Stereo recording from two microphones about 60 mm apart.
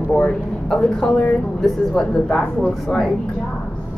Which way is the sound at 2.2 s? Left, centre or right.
Centre.